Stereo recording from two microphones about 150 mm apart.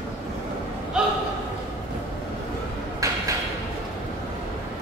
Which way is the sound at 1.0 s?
5° right (ahead or behind).